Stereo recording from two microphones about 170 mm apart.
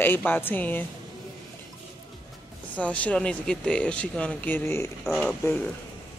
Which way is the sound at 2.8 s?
10° left (ahead or behind).